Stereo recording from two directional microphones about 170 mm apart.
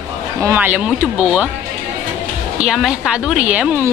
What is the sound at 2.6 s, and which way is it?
A woman's voice, 5° right (ahead or behind).